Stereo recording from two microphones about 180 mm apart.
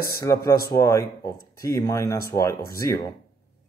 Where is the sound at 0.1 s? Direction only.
15° left (ahead or behind).